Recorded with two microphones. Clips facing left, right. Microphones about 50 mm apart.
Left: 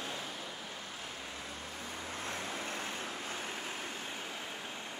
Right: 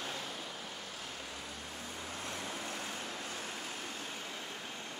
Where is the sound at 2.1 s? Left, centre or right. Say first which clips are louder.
Left 2 dB; left.